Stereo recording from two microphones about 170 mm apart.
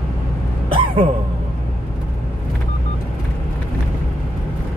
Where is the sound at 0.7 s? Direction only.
30° right (ahead or behind).